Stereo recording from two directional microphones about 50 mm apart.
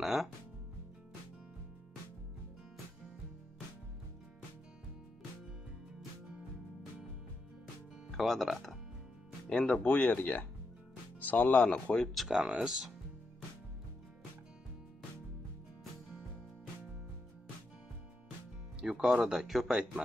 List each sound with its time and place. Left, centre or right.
0.0 s music: centre
8.2 s speech: centre
9.5 s speech: centre
9.8 s speech: left
12.3 s speech: centre
18.9 s speech: centre